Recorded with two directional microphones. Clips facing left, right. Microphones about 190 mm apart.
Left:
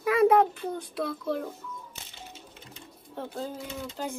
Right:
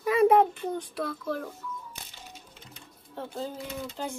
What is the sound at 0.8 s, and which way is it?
Speech, 15° left (ahead or behind).